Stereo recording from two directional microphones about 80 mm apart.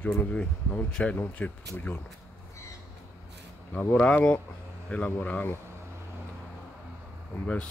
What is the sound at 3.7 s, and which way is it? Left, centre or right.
Speech, centre.